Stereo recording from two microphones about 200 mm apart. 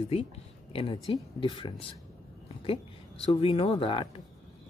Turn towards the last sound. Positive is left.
turn(degrees=25)  # may be behind; listen again after turning